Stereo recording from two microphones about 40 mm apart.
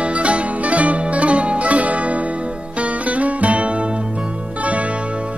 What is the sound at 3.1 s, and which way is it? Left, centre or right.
Music, right.